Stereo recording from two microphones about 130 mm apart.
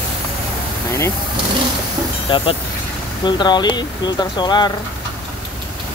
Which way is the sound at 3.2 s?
35° left (ahead or behind).